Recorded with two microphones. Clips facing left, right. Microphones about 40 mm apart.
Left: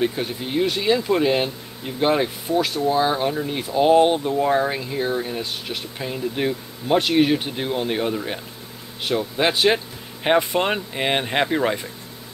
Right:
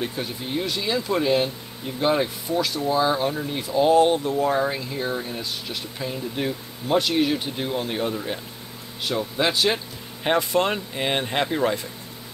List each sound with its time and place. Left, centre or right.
0.0 s speech: centre